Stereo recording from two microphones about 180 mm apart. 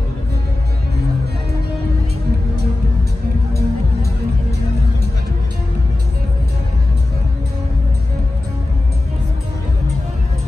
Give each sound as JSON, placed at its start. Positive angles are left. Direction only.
{"t": 3.5, "sound": "music", "side_deg": -65}